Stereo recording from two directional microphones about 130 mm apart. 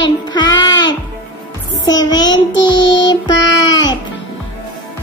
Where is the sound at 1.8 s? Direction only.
30° left (ahead or behind).